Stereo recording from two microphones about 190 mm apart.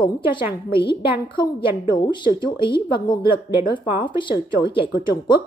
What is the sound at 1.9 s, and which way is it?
A woman's voice, 25° left (ahead or behind).